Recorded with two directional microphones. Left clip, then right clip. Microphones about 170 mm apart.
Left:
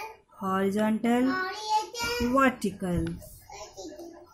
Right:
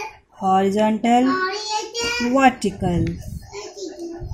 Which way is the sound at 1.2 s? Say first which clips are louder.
Right 8 dB; 45° left (ahead or behind).